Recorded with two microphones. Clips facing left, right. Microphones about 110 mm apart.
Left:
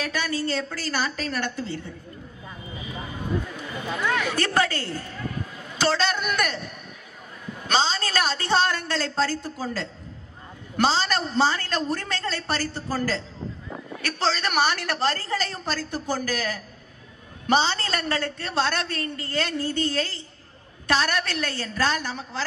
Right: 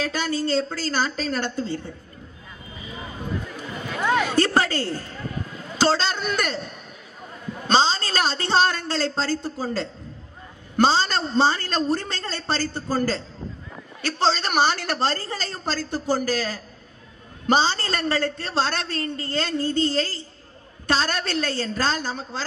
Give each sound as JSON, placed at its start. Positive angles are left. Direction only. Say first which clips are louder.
{"t": 0.0, "sound": "a man's voice", "louder": "right 2 dB", "side_deg": -30}
{"t": 3.5, "sound": "a sound", "louder": "even", "side_deg": -25}
{"t": 5.8, "sound": "a man's voice", "louder": "right 2 dB", "side_deg": -30}